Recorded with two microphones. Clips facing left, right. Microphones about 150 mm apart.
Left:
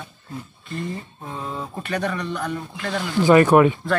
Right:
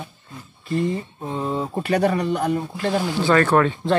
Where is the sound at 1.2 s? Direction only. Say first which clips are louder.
Right 6 dB; 30° right (ahead or behind).